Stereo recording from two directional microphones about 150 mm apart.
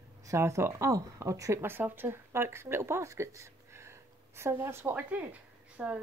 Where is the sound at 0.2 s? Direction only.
20° right (ahead or behind).